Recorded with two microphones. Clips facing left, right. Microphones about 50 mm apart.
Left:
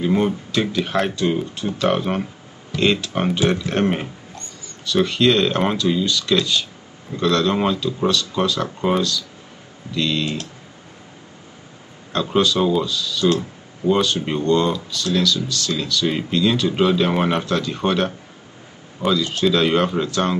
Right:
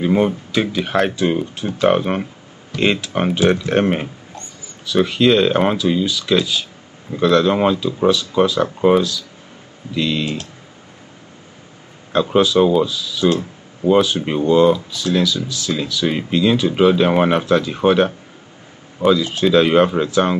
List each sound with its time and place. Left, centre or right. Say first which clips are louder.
0.0 s speech: right 3 dB; centre
12.1 s speech: right 4 dB; centre